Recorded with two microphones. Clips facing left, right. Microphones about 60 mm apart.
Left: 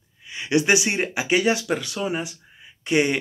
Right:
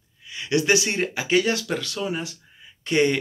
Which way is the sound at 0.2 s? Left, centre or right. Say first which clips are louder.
Left 2 dB; left.